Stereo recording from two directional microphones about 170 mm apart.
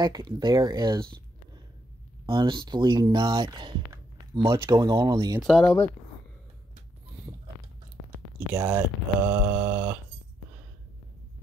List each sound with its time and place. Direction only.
0.0 s speech: 25° right (ahead or behind)
2.2 s speech: 30° right (ahead or behind)
5.4 s speech: centre (ahead or behind)
8.5 s mantra: 10° right (ahead or behind)